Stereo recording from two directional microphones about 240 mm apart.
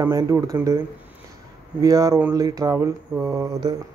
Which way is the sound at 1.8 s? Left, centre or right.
Centre.